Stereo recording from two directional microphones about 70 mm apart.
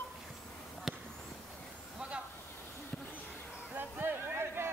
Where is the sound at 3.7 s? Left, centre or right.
Right.